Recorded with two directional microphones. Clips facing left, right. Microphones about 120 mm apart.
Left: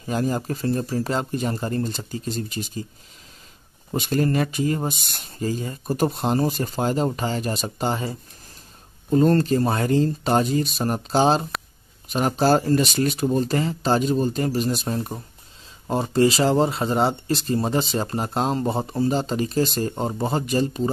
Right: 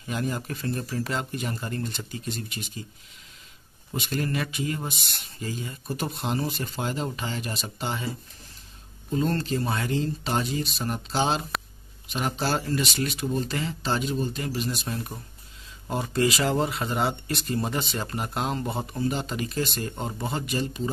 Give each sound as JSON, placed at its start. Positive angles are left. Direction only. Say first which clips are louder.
{"t": 0.0, "sound": "speech", "louder": "left 6 dB", "side_deg": 35}
{"t": 3.9, "sound": "speech", "louder": "left 7 dB", "side_deg": 40}
{"t": 9.1, "sound": "speech", "louder": "left 8 dB", "side_deg": 45}